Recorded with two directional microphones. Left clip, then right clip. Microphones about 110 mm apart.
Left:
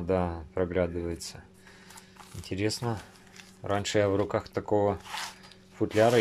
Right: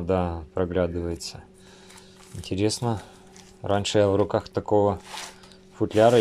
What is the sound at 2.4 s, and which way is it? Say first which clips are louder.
Speech: right 5 dB; 20° right (ahead or behind).